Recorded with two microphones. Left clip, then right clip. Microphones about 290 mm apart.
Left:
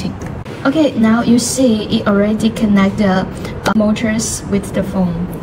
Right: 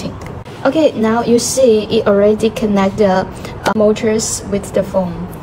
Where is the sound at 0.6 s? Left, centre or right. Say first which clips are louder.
Right 1 dB; right.